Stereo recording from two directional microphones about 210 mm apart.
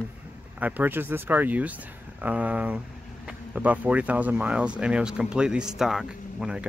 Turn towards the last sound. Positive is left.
turn(degrees=-5)  # may be behind; listen again after turning